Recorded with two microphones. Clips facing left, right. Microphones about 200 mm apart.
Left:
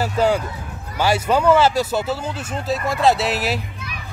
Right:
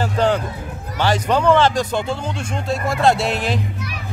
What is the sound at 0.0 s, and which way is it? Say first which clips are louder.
Speech: even; 10° left (ahead or behind).